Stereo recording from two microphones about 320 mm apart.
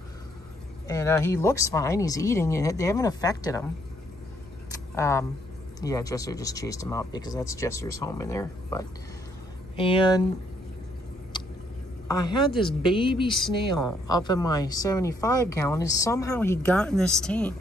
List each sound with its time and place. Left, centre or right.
0.8 s speech: centre
4.6 s a sound: centre
5.8 s speech: centre
11.3 s a sound: centre
12.1 s speech: centre
13.3 s speech: centre
14.0 s speech: centre